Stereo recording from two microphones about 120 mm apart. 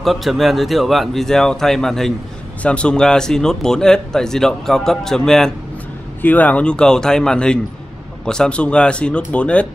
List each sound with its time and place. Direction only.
0.0 s speech: centre (ahead or behind)